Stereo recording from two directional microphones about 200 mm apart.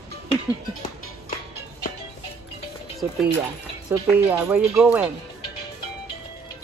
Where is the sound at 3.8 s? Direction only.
15° right (ahead or behind).